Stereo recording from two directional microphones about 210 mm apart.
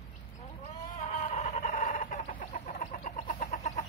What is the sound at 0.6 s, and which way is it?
Chicken, 35° left (ahead or behind).